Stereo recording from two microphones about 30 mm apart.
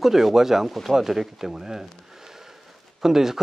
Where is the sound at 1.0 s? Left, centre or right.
Centre.